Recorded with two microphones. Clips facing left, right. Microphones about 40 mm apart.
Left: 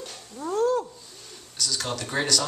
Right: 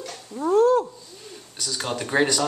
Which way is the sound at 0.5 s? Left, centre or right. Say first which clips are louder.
Right 6 dB; centre.